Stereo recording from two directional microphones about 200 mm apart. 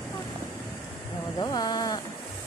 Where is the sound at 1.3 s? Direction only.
20° left (ahead or behind).